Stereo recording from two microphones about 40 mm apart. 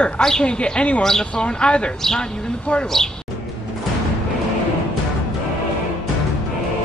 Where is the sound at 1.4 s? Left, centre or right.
Left.